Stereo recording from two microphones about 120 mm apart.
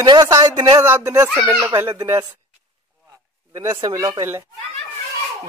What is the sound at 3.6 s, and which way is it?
Speech, 30° right (ahead or behind).